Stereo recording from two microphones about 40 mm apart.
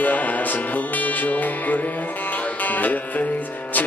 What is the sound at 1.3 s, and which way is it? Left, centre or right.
Speech, left.